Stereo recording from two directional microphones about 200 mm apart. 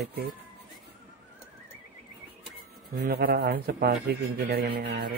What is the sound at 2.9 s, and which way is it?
Speech, 50° right (ahead or behind).